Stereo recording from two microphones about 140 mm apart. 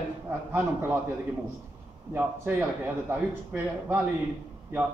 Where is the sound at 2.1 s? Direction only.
15° right (ahead or behind).